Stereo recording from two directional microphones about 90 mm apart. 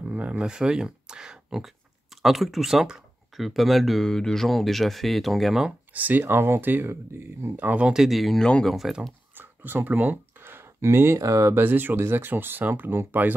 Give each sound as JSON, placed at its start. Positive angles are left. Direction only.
{"t": 0.0, "sound": "speech", "side_deg": -15}
{"t": 5.9, "sound": "speech", "side_deg": -20}
{"t": 8.7, "sound": "speech", "side_deg": 0}
{"t": 9.3, "sound": "a sound", "side_deg": -20}
{"t": 11.5, "sound": "speech", "side_deg": -20}